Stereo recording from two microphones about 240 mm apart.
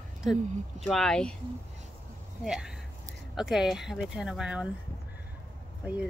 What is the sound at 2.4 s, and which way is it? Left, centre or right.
Speech, centre.